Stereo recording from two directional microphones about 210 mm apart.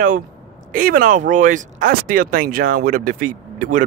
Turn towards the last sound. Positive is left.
turn(degrees=-40)  # may be behind; listen again after turning